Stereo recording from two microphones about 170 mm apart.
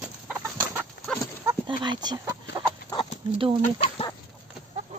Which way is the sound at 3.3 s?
30° right (ahead or behind).